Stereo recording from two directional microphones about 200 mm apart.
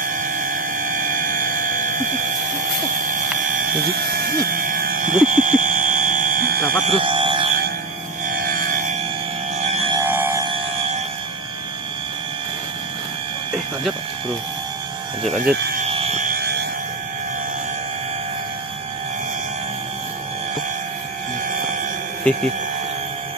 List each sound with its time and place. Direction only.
0.0 s mains hum: 40° right (ahead or behind)
4.1 s a sound: 50° right (ahead or behind)
6.9 s buzzer: 25° right (ahead or behind)
8.4 s music: 45° right (ahead or behind)
9.8 s music: 25° right (ahead or behind)
10.0 s a sound: 10° right (ahead or behind)
10.4 s a sound: 25° right (ahead or behind)
15.2 s speech: centre (ahead or behind)
15.9 s vehicle: 30° right (ahead or behind)